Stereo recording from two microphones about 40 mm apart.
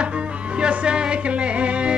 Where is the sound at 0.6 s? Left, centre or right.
Right.